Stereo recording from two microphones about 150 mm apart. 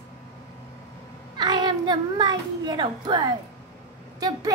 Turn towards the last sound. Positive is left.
turn(degrees=-25)  # may be behind; listen again after turning